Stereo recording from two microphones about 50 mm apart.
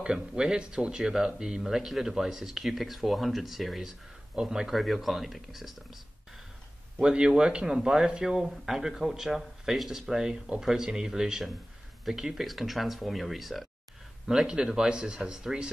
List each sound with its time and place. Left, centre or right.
0.0 s speech: centre
4.7 s speech: centre
7.0 s speech: centre
14.2 s speech: centre